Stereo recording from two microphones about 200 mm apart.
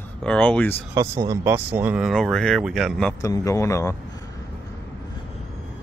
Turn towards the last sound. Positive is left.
turn(degrees=15)  # may be behind; listen again after turning